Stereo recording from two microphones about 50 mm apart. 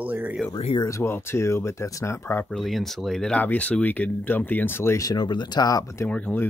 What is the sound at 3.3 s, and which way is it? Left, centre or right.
Speech, left.